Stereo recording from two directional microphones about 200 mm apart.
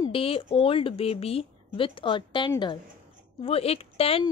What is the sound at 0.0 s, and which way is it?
Speech, 25° left (ahead or behind).